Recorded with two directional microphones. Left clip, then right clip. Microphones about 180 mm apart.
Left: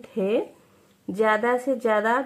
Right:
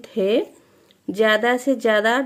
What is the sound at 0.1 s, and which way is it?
A woman's voice, 35° right (ahead or behind).